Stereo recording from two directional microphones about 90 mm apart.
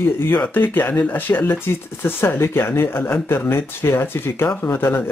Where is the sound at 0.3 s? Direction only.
20° left (ahead or behind).